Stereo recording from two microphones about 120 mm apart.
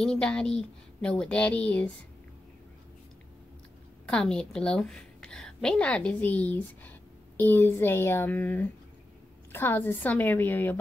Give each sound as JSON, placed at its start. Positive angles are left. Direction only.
{"t": 0.0, "sound": "speech", "side_deg": 5}
{"t": 4.0, "sound": "a woman's voice", "side_deg": 5}